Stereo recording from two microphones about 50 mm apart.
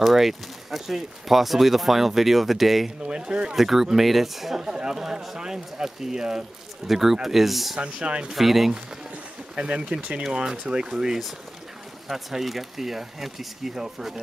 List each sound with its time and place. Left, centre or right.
0.0 s speech: centre
3.1 s speech: centre
3.5 s speech: centre
7.8 s speech: right
8.3 s speech: centre
9.6 s speech: centre